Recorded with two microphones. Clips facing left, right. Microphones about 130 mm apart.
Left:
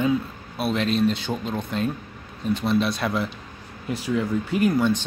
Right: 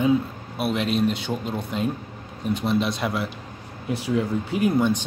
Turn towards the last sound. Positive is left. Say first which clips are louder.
# even
turn(degrees=-15)  # may be behind; listen again after turning